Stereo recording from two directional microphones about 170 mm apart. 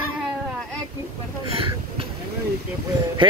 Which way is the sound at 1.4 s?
35° right (ahead or behind).